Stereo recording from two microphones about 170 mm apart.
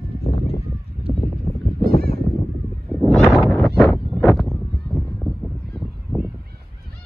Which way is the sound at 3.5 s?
Centre (ahead or behind).